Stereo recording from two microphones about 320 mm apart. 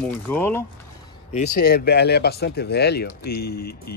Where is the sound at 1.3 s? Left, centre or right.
Left.